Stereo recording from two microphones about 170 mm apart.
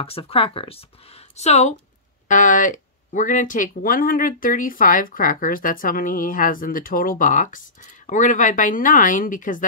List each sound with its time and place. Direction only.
0.0 s speech: 35° left (ahead or behind); by 9.7 s 50° left (ahead or behind)